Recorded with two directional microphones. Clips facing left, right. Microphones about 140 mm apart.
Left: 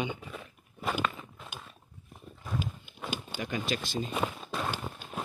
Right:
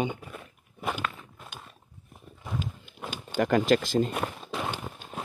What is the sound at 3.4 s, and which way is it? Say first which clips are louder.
Speech: right 12 dB; 90° right.